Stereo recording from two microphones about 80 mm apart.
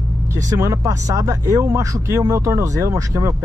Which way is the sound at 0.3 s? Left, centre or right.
Right.